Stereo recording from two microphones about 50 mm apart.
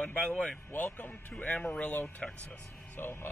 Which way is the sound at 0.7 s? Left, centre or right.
Left.